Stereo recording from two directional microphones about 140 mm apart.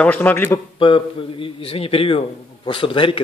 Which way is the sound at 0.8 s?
40° left (ahead or behind).